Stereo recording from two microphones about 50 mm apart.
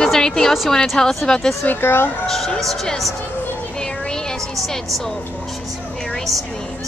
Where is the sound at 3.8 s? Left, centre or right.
Centre.